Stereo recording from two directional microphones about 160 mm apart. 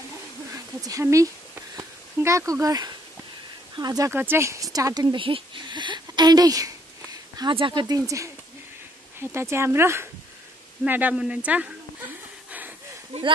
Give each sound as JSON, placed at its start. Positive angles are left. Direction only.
{"t": 0.8, "sound": "a woman's voice", "side_deg": -20}
{"t": 12.4, "sound": "a sound", "side_deg": -10}
{"t": 13.1, "sound": "speech", "side_deg": -40}